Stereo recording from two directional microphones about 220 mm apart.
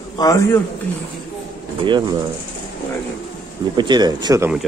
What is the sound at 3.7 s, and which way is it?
Speech, 20° right (ahead or behind).